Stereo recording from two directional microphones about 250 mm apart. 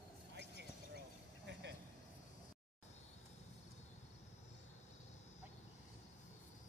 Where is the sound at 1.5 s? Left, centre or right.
Right.